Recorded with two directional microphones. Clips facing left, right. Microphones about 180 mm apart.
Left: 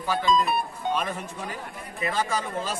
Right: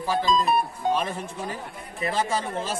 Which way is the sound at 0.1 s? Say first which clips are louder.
Right 1 dB; 35° right (ahead or behind).